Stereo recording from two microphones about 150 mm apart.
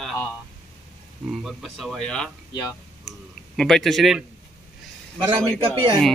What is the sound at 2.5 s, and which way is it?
Speech, 30° left (ahead or behind).